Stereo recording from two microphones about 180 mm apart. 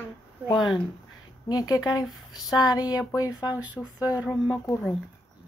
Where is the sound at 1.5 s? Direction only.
20° left (ahead or behind).